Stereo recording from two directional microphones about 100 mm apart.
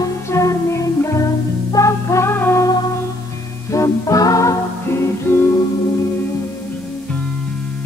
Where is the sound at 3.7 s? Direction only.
35° left (ahead or behind).